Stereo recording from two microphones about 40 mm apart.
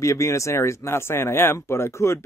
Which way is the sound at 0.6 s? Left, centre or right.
Left.